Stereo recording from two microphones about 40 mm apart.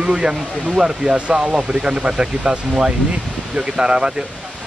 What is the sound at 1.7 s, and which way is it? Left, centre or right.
Speech, right.